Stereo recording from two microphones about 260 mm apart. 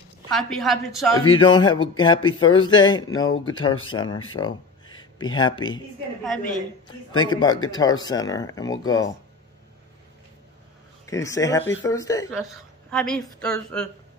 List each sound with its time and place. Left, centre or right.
0.3 s a woman's voice: centre
1.4 s speech: centre
6.2 s a woman's voice: centre
6.9 s speech: centre
11.1 s speech: centre
12.9 s a woman's voice: centre